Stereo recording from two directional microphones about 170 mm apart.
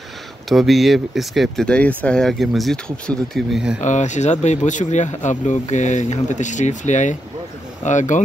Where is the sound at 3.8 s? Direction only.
45° left (ahead or behind).